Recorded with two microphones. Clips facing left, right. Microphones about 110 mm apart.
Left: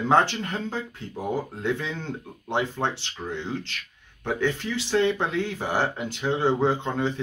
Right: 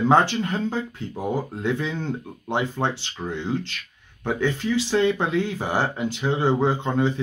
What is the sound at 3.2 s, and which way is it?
Speech, 20° right (ahead or behind).